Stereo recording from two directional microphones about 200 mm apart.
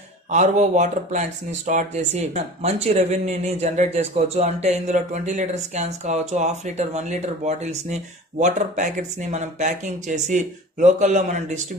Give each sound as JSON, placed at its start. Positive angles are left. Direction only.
{"t": 0.3, "sound": "speech", "side_deg": -35}